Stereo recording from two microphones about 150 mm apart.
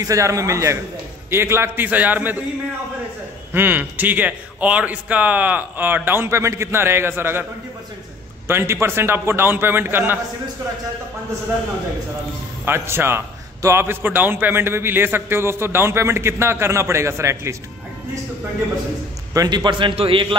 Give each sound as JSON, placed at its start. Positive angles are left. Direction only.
{"t": 0.0, "sound": "a man's voice", "side_deg": -20}
{"t": 3.5, "sound": "a man's voice", "side_deg": -10}
{"t": 8.5, "sound": "a man's voice", "side_deg": -15}
{"t": 12.6, "sound": "a man's voice", "side_deg": -15}
{"t": 19.3, "sound": "a man's voice", "side_deg": -25}